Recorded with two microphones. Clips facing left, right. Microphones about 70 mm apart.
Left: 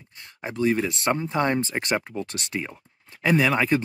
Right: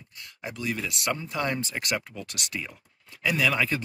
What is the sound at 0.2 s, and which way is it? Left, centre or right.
Speech, left.